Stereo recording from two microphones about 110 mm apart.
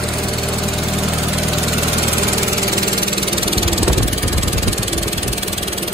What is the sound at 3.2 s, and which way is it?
Engine, 55° right (ahead or behind).